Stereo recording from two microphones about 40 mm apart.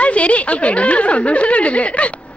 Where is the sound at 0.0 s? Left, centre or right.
Left.